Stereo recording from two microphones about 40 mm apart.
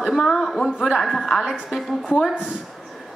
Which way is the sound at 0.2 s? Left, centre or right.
Centre.